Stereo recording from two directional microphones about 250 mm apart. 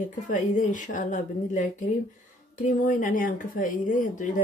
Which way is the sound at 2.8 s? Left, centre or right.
Left.